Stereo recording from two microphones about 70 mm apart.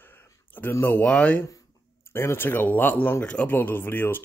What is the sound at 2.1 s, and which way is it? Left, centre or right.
Speech, left.